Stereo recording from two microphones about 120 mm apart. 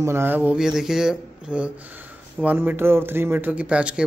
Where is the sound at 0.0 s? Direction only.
20° right (ahead or behind).